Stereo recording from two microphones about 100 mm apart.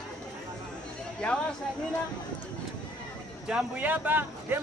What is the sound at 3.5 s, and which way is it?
Speech, 15° right (ahead or behind).